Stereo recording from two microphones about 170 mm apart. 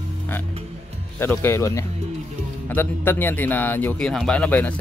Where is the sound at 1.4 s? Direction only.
15° left (ahead or behind).